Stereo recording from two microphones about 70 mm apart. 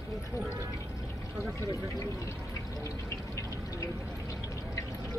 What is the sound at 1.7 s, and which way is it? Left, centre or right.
Speech, left.